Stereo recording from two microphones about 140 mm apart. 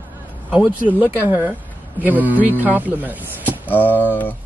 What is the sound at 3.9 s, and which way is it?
Speech, 15° left (ahead or behind).